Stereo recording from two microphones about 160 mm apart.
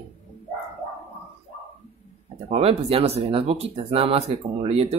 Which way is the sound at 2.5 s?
40° right (ahead or behind).